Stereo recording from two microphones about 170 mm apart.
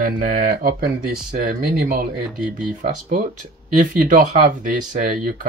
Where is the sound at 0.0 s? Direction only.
55° right (ahead or behind).